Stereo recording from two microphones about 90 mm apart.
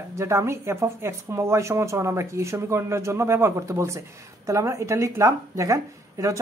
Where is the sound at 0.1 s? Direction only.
30° right (ahead or behind).